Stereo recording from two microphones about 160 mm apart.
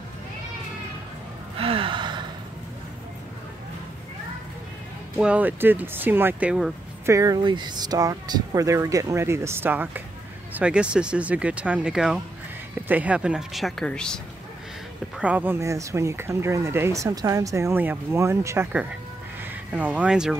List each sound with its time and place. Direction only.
1.6 s gasp: 35° right (ahead or behind)
5.1 s speech: 10° right (ahead or behind)
15.1 s speech: 10° right (ahead or behind)